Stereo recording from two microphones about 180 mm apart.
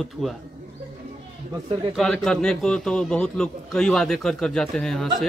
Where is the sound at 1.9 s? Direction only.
5° left (ahead or behind).